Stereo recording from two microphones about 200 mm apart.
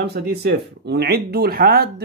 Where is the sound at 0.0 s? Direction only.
55° right (ahead or behind).